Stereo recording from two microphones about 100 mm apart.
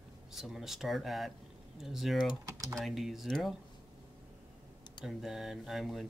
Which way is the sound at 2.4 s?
35° right (ahead or behind).